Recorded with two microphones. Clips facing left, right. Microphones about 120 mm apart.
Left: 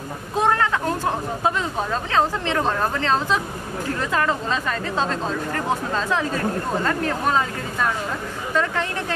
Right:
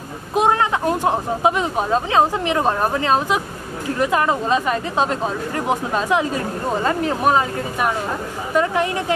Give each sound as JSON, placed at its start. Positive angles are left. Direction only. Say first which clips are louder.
{"t": 0.3, "sound": "speech", "louder": "right 3 dB", "side_deg": -15}